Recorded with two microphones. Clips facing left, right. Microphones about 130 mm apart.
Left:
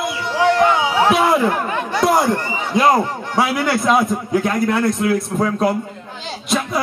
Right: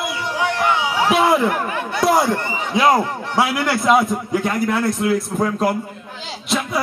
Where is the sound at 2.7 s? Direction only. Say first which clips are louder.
Left 1 dB; centre (ahead or behind).